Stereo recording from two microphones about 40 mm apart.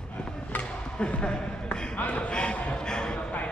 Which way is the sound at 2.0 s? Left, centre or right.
Left.